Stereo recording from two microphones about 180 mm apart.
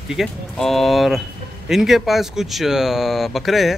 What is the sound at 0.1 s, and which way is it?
Speech, centre (ahead or behind).